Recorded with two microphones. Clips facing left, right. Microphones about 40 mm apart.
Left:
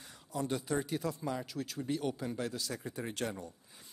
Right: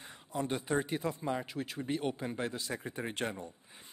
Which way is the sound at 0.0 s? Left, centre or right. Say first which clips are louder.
Right 1 dB; right.